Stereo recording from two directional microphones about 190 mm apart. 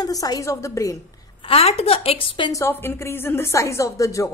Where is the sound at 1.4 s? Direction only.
30° left (ahead or behind).